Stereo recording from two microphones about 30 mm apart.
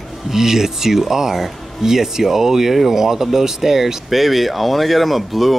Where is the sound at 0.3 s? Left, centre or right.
Centre.